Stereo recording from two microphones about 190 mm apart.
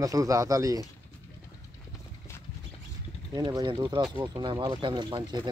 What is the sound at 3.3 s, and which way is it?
Speech, 20° right (ahead or behind).